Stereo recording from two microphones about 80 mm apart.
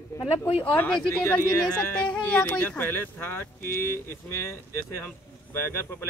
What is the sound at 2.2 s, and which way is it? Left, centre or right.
Speech, left.